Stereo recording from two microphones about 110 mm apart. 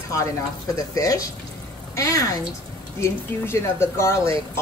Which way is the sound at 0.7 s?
30° left (ahead or behind).